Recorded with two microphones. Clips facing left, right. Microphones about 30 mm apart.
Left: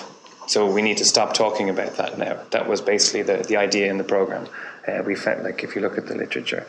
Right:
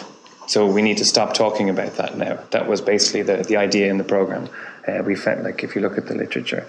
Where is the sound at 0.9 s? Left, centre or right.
Right.